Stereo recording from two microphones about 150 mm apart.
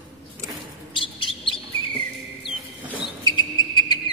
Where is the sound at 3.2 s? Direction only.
30° left (ahead or behind).